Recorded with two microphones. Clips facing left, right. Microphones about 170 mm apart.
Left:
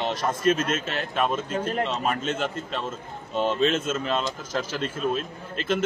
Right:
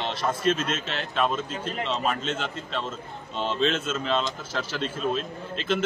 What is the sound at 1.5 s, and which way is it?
Speech, 55° left (ahead or behind).